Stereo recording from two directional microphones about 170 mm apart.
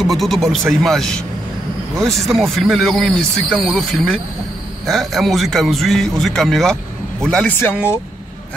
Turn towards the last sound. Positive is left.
turn(degrees=5)  # may be behind; listen again after turning